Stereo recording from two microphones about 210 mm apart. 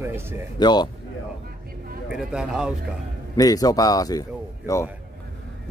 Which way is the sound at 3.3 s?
15° left (ahead or behind).